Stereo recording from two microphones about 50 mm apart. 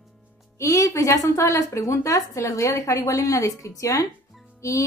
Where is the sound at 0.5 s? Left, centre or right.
Left.